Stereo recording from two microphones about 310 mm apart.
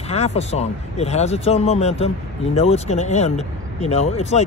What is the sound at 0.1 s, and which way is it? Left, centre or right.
Speech, centre.